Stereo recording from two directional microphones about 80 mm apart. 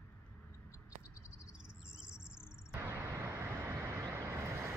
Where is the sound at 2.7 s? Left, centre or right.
Right.